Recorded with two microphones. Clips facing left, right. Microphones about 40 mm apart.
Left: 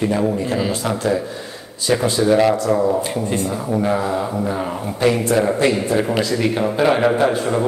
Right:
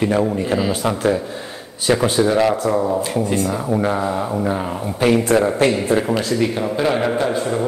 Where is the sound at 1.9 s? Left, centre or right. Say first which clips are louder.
Right 1 dB; right.